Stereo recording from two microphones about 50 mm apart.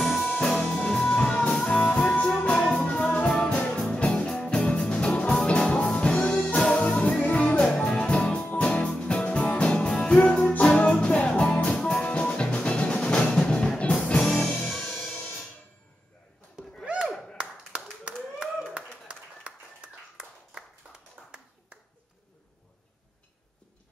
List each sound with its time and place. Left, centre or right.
0.0 s music: centre
0.5 s music: centre
3.7 s music: centre
4.9 s music: left
7.6 s music: centre
8.6 s music: centre
12.1 s music: left
14.2 s music: centre
16.8 s a sound: centre
17.7 s clapping: right
21.2 s a sound: centre